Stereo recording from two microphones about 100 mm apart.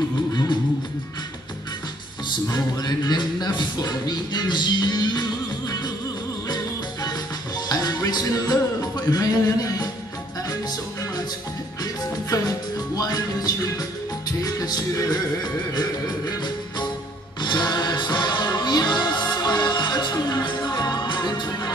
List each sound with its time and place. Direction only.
0.3 s music: 40° left (ahead or behind)
2.4 s music: 40° left (ahead or behind)
11.8 s music: 40° left (ahead or behind)